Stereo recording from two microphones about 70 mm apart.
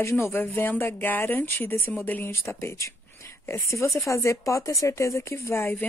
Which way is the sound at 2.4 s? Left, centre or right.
Left.